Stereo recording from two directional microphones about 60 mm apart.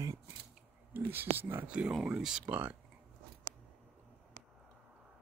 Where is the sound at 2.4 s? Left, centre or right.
Right.